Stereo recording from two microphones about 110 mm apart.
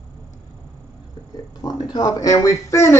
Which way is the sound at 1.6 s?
35° left (ahead or behind).